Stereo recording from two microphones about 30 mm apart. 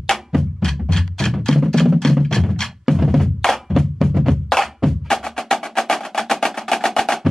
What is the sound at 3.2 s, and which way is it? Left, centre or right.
Drum, centre.